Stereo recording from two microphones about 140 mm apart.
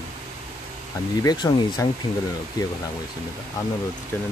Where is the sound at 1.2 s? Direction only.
25° left (ahead or behind).